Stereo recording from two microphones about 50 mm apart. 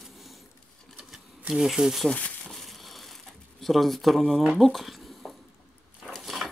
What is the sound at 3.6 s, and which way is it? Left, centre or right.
Speech, centre.